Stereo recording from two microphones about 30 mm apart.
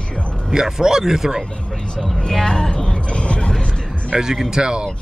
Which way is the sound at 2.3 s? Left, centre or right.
Left.